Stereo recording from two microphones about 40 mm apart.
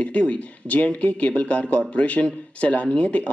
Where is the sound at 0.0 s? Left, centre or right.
Left.